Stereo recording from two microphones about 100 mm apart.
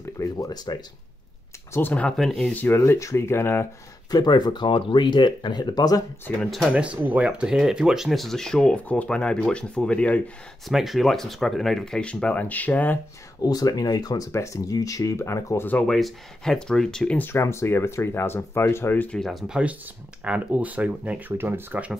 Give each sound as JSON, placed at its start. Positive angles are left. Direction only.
{"t": 0.0, "sound": "speech", "side_deg": 35}
{"t": 1.7, "sound": "speech", "side_deg": 20}
{"t": 2.0, "sound": "speech", "side_deg": 5}
{"t": 2.5, "sound": "speech", "side_deg": 20}
{"t": 4.1, "sound": "speech", "side_deg": 45}
{"t": 6.4, "sound": "speech", "side_deg": 5}
{"t": 6.7, "sound": "speech", "side_deg": -15}
{"t": 10.7, "sound": "speech", "side_deg": 0}
{"t": 13.4, "sound": "speech", "side_deg": 40}
{"t": 15.9, "sound": "speech", "side_deg": 5}
{"t": 17.2, "sound": "speech", "side_deg": 25}
{"t": 19.0, "sound": "speech", "side_deg": 5}
{"t": 19.4, "sound": "speech", "side_deg": -10}